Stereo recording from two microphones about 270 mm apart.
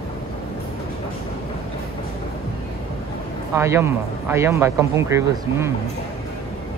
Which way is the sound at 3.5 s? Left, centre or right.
Centre.